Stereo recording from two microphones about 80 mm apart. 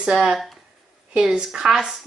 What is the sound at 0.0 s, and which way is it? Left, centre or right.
Speech, centre.